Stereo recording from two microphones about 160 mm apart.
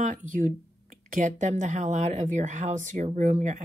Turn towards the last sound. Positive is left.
turn(degrees=-50)  # may be behind; listen again after turning